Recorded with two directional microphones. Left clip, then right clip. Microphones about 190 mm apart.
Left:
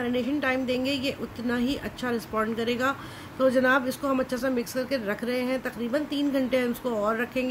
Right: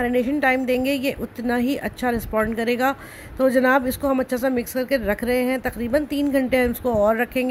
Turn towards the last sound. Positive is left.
turn(degrees=-25)  # may be behind; listen again after turning